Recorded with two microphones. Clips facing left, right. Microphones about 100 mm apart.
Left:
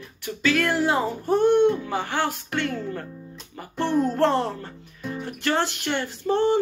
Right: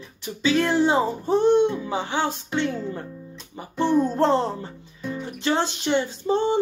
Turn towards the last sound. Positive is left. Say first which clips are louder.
# left 1 dB
turn(degrees=-20)  # may be behind; listen again after turning